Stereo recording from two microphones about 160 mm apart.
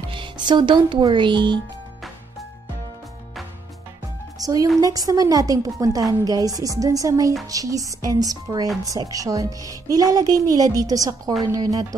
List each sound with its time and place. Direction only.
0.1 s speech: 30° right (ahead or behind)
4.4 s a woman's voice: 20° right (ahead or behind)